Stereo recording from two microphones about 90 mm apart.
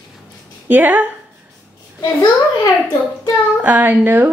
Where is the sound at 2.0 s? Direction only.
45° left (ahead or behind).